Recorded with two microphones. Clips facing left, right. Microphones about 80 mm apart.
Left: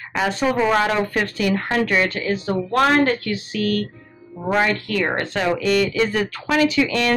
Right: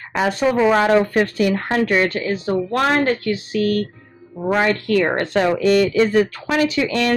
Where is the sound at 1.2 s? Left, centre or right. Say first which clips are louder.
Right 4 dB; right.